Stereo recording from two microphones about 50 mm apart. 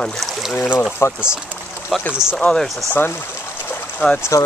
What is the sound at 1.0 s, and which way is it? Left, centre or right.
Speech, left.